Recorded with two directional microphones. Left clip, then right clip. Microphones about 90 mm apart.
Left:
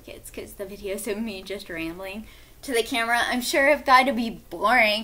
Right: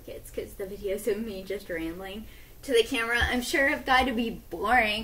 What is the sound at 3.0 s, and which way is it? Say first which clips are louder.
A woman's voice: left 3 dB; 30° left (ahead or behind).